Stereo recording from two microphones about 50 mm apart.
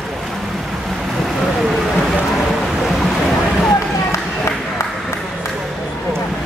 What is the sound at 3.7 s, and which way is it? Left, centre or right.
Run, left.